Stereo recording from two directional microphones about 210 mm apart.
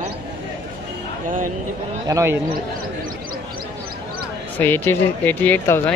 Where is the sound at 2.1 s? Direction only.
10° right (ahead or behind).